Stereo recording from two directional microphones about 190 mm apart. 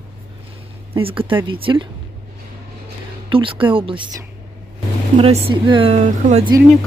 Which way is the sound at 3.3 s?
25° right (ahead or behind).